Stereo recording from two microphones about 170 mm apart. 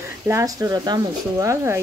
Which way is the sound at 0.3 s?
20° right (ahead or behind).